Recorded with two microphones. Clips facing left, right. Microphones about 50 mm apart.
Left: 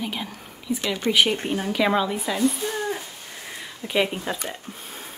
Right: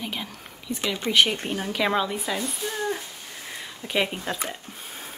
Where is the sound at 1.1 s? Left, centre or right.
Centre.